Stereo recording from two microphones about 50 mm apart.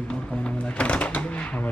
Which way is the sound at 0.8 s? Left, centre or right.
Left.